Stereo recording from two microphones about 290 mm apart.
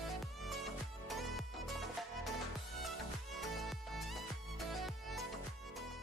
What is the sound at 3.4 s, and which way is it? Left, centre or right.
Music, centre.